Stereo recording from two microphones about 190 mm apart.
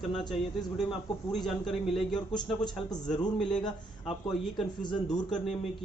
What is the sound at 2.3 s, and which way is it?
Speech, 20° left (ahead or behind).